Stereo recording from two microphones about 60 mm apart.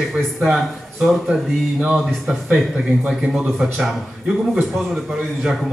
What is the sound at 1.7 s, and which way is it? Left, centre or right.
Speech, centre.